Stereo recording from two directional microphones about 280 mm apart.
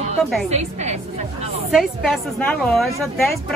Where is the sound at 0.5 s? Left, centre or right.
Right.